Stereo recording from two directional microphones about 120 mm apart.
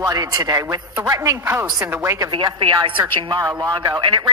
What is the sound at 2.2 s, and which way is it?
Speech, 40° right (ahead or behind).